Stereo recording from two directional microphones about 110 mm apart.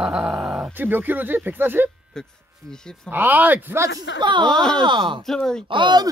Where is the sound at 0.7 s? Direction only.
15° right (ahead or behind).